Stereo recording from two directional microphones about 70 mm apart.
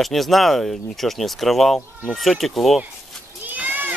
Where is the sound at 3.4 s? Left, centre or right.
Right.